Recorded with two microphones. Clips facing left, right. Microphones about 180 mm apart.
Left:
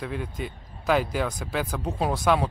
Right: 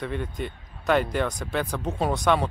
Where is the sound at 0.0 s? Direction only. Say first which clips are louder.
Right 2 dB; centre (ahead or behind).